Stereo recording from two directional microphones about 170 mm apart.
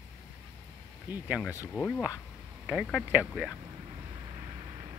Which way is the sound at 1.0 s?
10° right (ahead or behind).